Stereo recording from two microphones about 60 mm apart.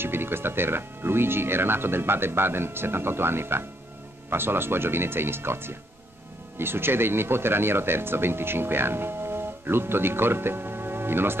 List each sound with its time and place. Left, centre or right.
0.0 s speech: right